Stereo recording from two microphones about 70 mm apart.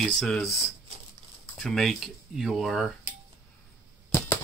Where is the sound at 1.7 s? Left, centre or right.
Centre.